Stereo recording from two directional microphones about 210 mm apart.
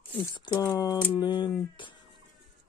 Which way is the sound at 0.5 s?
15° left (ahead or behind).